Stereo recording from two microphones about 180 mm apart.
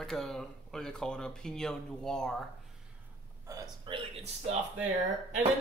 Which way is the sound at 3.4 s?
15° right (ahead or behind).